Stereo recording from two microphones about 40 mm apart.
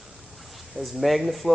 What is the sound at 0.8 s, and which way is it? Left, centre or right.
Speech, centre.